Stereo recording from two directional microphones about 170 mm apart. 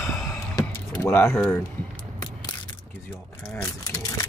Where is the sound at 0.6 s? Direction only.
20° left (ahead or behind).